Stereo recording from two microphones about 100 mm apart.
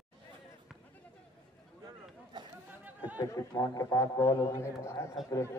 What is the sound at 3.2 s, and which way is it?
A man's voice, 45° left (ahead or behind).